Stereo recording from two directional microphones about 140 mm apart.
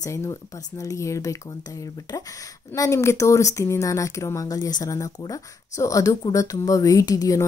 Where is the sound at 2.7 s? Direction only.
20° left (ahead or behind).